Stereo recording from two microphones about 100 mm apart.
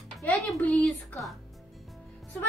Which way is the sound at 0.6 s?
15° left (ahead or behind).